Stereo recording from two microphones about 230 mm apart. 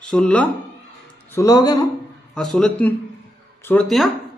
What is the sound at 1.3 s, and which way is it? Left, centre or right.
Speech, centre.